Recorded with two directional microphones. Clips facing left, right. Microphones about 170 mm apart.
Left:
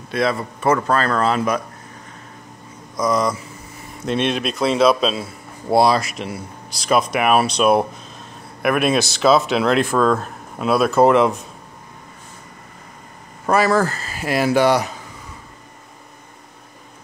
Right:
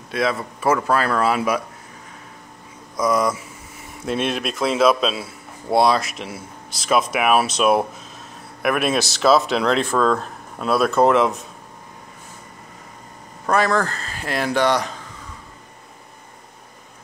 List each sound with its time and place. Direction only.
0.1 s speech: centre (ahead or behind)
3.0 s a man's voice: 5° right (ahead or behind)
13.5 s speech: 5° left (ahead or behind)